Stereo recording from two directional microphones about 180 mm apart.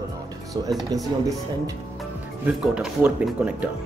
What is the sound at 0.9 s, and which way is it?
Speech, 20° right (ahead or behind).